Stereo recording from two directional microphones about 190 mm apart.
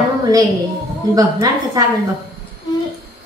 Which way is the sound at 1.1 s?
20° right (ahead or behind).